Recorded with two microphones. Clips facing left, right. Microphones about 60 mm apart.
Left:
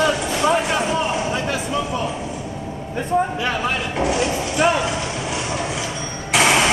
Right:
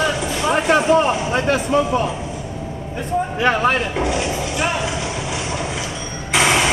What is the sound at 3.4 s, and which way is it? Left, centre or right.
Speech, right.